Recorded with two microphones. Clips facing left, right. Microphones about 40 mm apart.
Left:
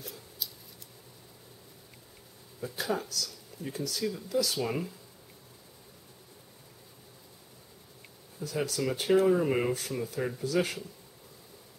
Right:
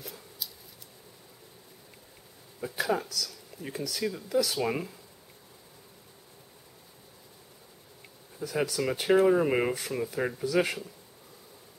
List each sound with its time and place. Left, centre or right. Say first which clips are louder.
0.4 s a sound: even; centre
2.6 s speech: right 3 dB; right
4.3 s speech: right 3 dB; centre
8.4 s speech: right 2 dB; right